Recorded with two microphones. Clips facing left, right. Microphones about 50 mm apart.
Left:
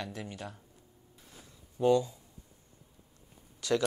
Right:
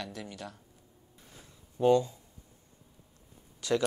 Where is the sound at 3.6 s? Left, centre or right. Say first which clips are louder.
Even; right.